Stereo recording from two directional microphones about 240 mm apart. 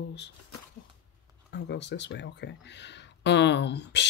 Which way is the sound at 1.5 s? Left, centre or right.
Left.